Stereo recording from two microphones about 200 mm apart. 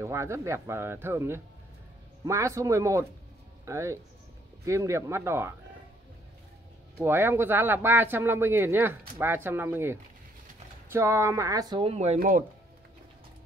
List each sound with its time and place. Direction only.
0.0 s speech: 15° right (ahead or behind)
7.0 s speech: 10° right (ahead or behind); by 12.4 s 40° right (ahead or behind)